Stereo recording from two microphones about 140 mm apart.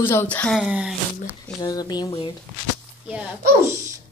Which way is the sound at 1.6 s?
30° left (ahead or behind).